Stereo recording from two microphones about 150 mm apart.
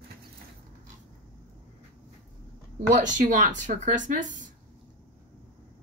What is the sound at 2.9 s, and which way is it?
Speech, 55° right (ahead or behind).